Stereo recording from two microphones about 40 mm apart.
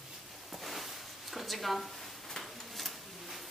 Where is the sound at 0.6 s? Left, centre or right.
Centre.